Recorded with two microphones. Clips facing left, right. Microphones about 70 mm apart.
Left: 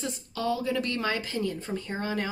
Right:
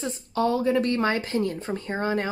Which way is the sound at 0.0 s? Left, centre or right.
Right.